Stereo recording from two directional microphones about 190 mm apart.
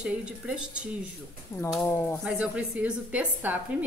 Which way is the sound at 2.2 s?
5° right (ahead or behind).